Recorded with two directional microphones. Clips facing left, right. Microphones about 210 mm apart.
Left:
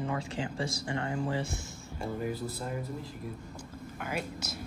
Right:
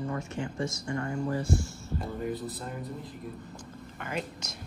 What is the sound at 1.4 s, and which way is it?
Speech, 25° left (ahead or behind).